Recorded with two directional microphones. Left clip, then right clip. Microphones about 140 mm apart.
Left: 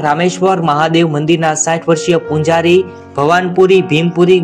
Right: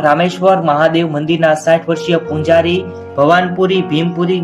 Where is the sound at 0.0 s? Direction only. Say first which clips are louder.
Right 1 dB; 30° left (ahead or behind).